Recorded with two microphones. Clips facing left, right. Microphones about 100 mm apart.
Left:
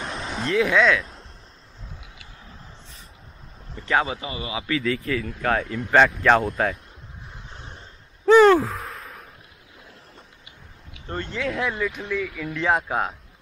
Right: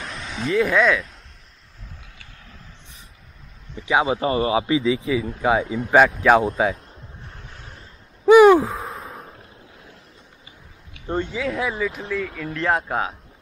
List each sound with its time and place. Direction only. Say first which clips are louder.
0.3 s speech: right 1 dB; centre (ahead or behind)
3.7 s speech: right 2 dB; 10° right (ahead or behind)
4.2 s a man's voice: right 11 dB; 40° right (ahead or behind)
4.6 s speech: right 4 dB; 15° right (ahead or behind)
7.5 s waves: left 1 dB; 30° left (ahead or behind)
8.3 s speech: right 3 dB; 10° right (ahead or behind)
8.9 s a sound: right 4 dB; 30° right (ahead or behind)
11.1 s speech: right 2 dB; 5° right (ahead or behind)